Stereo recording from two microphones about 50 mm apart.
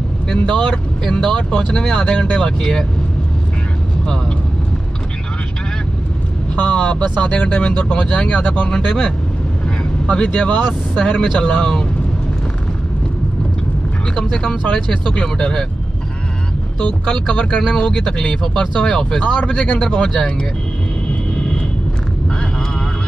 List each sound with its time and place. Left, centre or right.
0.6 s speech: centre
6.5 s speech: left
8.6 s speech: centre
10.0 s speech: left
14.1 s speech: centre
16.8 s speech: left